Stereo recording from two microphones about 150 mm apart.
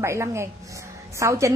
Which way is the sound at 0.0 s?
20° right (ahead or behind).